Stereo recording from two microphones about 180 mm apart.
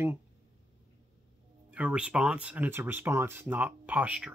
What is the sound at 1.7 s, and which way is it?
Speech, 5° right (ahead or behind).